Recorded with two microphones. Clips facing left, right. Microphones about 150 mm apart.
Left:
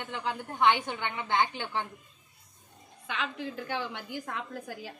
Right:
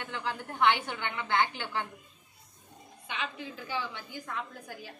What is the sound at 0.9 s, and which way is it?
Speech, 20° left (ahead or behind).